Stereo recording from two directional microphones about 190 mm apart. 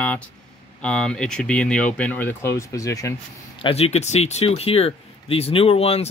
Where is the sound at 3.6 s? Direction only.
30° left (ahead or behind).